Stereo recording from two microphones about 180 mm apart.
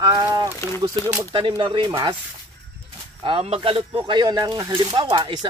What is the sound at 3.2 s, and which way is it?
A man's voice, 35° right (ahead or behind).